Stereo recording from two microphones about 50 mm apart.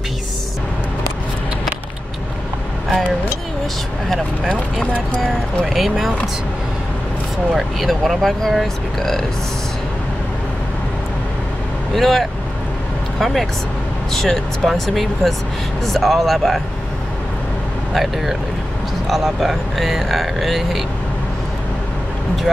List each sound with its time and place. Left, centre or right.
5.7 s speech: centre
7.5 s speech: centre
11.9 s speech: centre
17.9 s speech: centre